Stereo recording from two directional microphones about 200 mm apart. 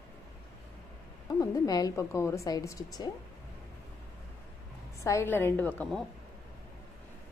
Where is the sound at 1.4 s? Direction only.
20° left (ahead or behind).